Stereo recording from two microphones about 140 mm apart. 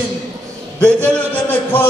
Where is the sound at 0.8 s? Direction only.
10° left (ahead or behind).